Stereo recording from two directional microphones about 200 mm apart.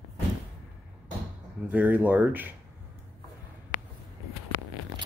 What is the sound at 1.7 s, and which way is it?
Speech, 10° right (ahead or behind).